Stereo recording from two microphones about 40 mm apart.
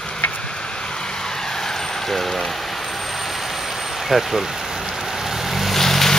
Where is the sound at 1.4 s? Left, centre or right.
Centre.